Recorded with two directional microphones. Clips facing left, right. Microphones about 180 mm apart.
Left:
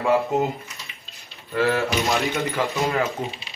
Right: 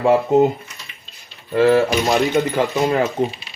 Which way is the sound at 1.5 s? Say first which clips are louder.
Right 8 dB; 25° right (ahead or behind).